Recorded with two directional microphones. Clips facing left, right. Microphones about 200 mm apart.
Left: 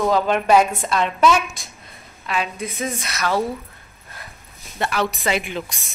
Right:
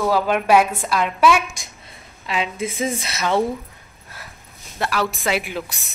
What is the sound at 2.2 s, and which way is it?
A woman's voice, 25° right (ahead or behind).